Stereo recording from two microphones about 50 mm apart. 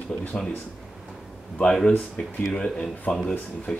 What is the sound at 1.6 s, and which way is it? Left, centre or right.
Speech, centre.